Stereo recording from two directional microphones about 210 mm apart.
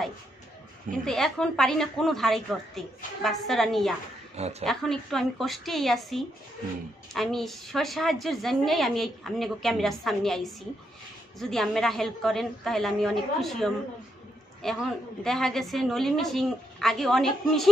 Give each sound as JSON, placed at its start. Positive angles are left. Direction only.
{"t": 1.0, "sound": "a woman's voice", "side_deg": 0}
{"t": 4.4, "sound": "a woman's voice", "side_deg": -30}
{"t": 4.6, "sound": "a woman's voice", "side_deg": 0}